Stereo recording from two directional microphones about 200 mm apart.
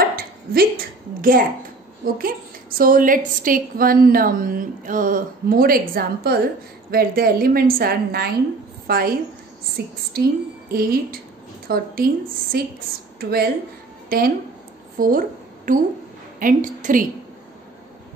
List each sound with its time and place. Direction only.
0.1 s speech: 50° right (ahead or behind)
2.8 s a woman's voice: 45° right (ahead or behind)